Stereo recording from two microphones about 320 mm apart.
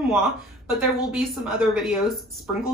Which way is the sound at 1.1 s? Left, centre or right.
Centre.